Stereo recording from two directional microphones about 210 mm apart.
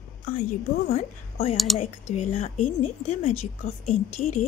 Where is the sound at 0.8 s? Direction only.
30° left (ahead or behind).